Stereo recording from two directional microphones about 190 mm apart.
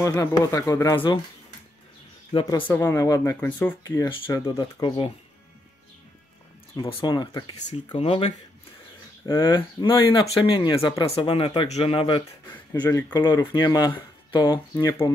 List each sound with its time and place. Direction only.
0.0 s speech: 15° left (ahead or behind)
2.3 s speech: 25° left (ahead or behind)
3.8 s speech: 20° left (ahead or behind)
6.8 s speech: 25° left (ahead or behind)
11.1 s speech: 30° left (ahead or behind)